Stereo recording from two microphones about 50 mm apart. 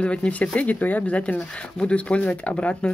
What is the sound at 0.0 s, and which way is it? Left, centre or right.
Speech, left.